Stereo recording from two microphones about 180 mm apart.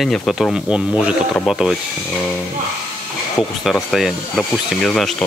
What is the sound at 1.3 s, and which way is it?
Speech, 10° left (ahead or behind).